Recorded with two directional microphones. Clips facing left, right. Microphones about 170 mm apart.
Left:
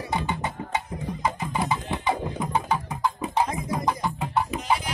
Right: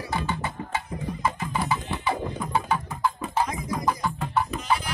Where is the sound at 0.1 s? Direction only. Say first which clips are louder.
Left 1 dB; 20° left (ahead or behind).